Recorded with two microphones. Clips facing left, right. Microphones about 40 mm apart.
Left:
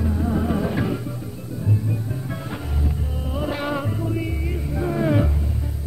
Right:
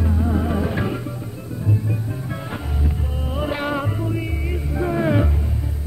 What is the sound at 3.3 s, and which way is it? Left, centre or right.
Music, centre.